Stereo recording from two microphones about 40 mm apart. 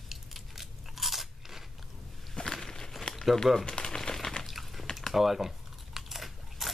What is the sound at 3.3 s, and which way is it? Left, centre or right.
Speech, centre.